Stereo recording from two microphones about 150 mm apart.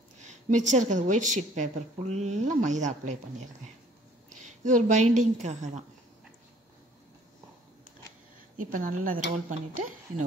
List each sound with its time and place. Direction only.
0.2 s a woman's voice: 55° right (ahead or behind)
8.5 s speech: 65° right (ahead or behind)